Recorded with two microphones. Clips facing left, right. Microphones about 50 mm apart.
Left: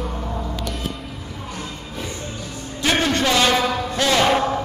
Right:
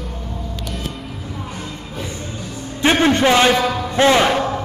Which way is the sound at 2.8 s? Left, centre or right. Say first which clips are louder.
Right 5 dB; right.